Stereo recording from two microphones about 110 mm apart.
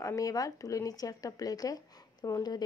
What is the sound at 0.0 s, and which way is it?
A woman's voice, 30° left (ahead or behind).